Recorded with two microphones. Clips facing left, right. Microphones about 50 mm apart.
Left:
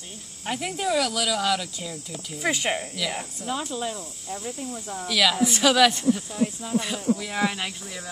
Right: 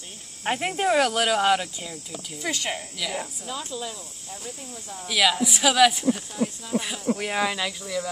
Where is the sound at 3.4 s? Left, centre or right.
Left.